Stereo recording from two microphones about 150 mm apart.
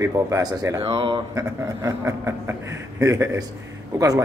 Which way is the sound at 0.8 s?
30° right (ahead or behind).